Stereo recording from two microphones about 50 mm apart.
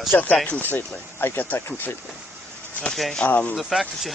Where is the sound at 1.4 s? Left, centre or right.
Left.